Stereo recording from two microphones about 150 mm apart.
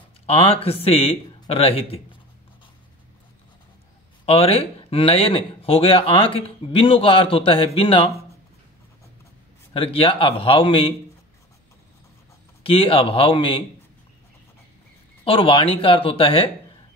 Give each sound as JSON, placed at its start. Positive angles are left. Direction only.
{"t": 0.3, "sound": "speech", "side_deg": 40}
{"t": 4.3, "sound": "speech", "side_deg": 45}
{"t": 9.8, "sound": "speech", "side_deg": 40}
{"t": 12.6, "sound": "speech", "side_deg": 40}
{"t": 15.2, "sound": "speech", "side_deg": 35}